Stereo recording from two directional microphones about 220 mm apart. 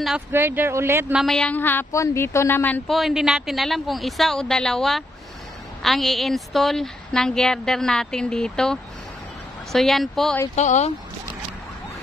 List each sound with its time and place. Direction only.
0.0 s speech: 5° right (ahead or behind)
10.5 s speech: 30° left (ahead or behind)